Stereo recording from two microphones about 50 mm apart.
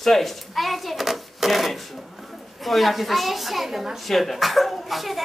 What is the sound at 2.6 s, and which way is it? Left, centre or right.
A woman's voice, centre.